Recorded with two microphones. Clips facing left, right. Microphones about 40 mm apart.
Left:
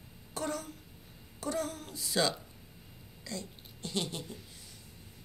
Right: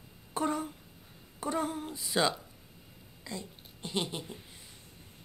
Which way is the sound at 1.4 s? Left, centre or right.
Right.